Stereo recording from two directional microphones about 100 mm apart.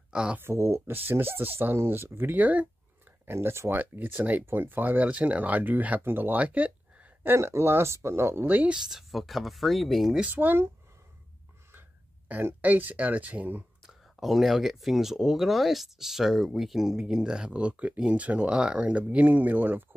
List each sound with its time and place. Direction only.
0.1 s speech: 5° right (ahead or behind)
0.4 s speech: 25° right (ahead or behind)
7.3 s speech: 25° right (ahead or behind)
8.9 s speech: centre (ahead or behind)
10.2 s speech: 20° right (ahead or behind)
12.3 s speech: 20° right (ahead or behind)
14.1 s speech: centre (ahead or behind); by 19.8 s 20° right (ahead or behind)